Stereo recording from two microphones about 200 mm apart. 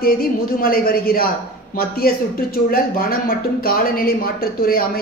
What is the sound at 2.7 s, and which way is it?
Speech, 45° left (ahead or behind).